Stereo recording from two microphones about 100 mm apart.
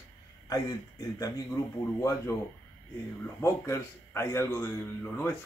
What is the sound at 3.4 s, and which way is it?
A man's voice, 25° left (ahead or behind).